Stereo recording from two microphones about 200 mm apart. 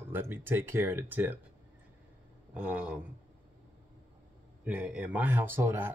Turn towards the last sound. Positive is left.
turn(degrees=-10)  # may be behind; listen again after turning